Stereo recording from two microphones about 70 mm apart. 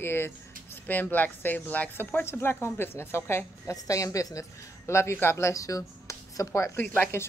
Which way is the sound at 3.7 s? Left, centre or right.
Left.